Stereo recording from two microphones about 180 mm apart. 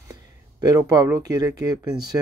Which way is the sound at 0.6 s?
20° right (ahead or behind).